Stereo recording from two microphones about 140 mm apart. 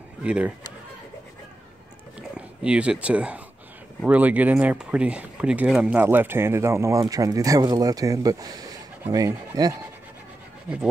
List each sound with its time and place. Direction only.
0.2 s speech: 5° right (ahead or behind)
2.1 s a sound: 5° right (ahead or behind)
4.0 s speech: 10° right (ahead or behind)